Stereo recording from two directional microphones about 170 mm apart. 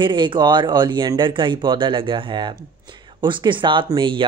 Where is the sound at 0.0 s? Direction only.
25° right (ahead or behind).